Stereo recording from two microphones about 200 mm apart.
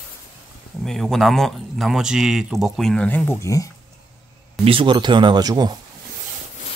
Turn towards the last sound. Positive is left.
turn(degrees=-20)  # may be behind; listen again after turning